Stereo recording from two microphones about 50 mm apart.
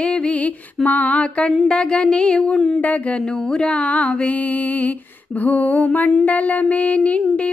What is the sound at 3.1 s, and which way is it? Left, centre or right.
Mantra, centre.